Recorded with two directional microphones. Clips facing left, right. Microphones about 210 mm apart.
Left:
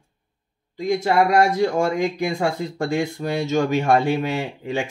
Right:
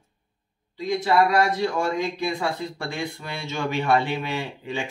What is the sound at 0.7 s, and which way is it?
Speech, 45° left (ahead or behind).